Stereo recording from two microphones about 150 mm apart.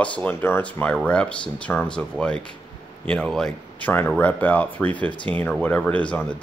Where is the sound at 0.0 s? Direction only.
10° left (ahead or behind).